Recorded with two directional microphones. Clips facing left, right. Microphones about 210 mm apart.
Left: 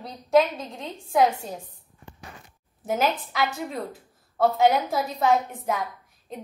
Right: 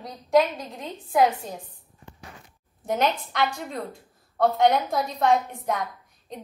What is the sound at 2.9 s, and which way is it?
A woman's voice, 5° left (ahead or behind).